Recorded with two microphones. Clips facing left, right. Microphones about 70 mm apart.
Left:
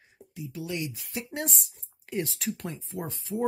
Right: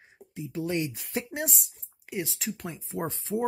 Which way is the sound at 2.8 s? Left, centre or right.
Right.